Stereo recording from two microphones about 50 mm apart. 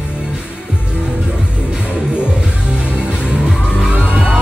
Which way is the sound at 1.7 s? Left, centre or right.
Centre.